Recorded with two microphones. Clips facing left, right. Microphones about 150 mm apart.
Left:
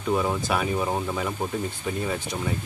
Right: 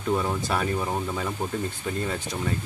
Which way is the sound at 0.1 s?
5° left (ahead or behind).